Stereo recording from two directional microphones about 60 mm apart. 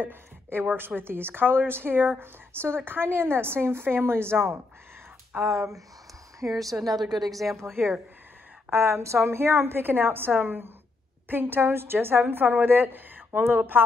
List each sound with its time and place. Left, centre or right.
0.0 s a woman's voice: right
6.4 s speech: right
6.8 s a woman's voice: centre
7.5 s speech: right